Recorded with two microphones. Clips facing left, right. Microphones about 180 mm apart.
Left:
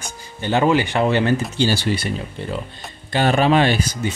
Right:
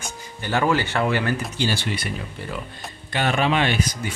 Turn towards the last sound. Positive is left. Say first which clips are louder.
# left 4 dB
turn(degrees=30)  # may be behind; listen again after turning